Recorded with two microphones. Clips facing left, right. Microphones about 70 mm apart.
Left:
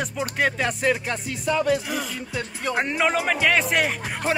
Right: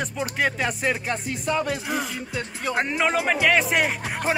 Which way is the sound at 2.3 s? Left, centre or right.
Centre.